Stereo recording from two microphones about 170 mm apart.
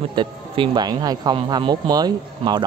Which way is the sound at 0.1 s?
25° right (ahead or behind).